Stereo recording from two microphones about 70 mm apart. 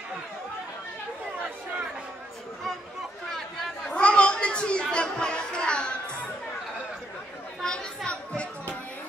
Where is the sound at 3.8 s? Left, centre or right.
Centre.